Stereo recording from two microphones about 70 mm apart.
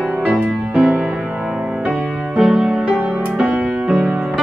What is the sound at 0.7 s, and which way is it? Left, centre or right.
Music, centre.